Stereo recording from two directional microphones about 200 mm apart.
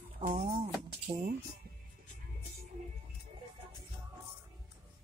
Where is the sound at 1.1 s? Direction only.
35° right (ahead or behind).